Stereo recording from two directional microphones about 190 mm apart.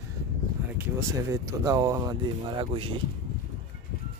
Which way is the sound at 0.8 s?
15° right (ahead or behind).